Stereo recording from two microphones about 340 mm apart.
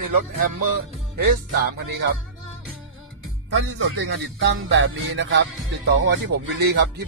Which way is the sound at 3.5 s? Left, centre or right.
Right.